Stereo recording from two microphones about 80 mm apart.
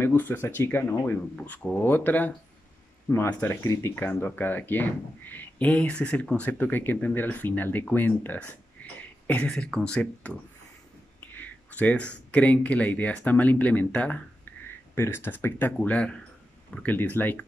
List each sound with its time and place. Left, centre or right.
0.0 s speech: left
8.8 s a sound: left
9.3 s speech: centre
11.3 s speech: left
15.0 s speech: left